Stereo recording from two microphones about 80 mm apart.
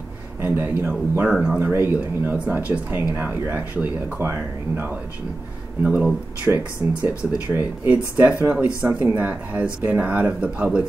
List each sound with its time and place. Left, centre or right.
0.4 s speech: right
1.3 s speech: centre
1.6 s speech: right
5.8 s speech: centre